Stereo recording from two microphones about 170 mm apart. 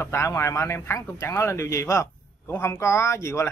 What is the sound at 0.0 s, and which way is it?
A man's voice, 15° left (ahead or behind).